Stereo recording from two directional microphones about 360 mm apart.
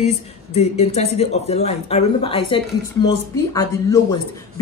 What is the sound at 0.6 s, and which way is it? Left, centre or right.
Speech, centre.